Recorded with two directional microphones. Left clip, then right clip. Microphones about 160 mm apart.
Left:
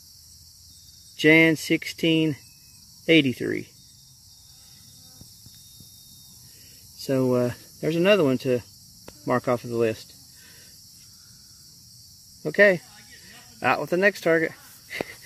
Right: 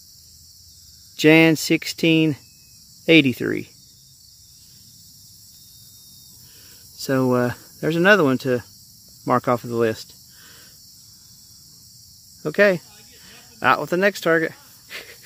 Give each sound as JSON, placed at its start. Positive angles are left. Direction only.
{"t": 1.1, "sound": "cricket", "side_deg": -20}
{"t": 7.0, "sound": "speech", "side_deg": -15}
{"t": 12.4, "sound": "speech", "side_deg": -10}